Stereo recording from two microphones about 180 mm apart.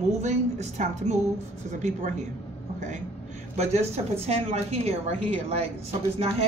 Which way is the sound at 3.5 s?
35° right (ahead or behind).